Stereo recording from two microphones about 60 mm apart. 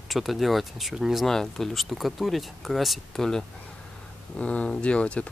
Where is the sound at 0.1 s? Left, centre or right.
Centre.